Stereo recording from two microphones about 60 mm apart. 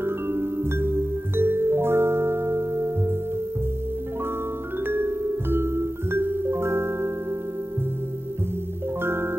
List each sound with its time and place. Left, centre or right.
0.0 s music: right
4.8 s music: right
9.0 s music: right